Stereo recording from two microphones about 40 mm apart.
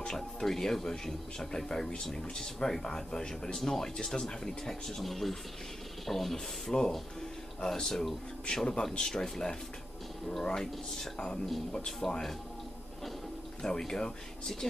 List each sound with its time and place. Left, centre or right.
0.0 s speech: centre
6.3 s speech: centre
13.6 s speech: centre